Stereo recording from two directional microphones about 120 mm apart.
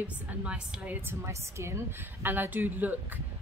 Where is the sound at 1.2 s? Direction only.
20° right (ahead or behind).